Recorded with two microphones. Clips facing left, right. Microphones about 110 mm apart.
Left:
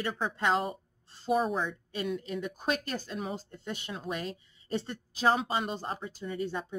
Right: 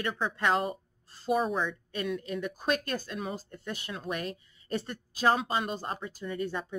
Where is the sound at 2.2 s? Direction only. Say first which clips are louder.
Right 1 dB; 55° right (ahead or behind).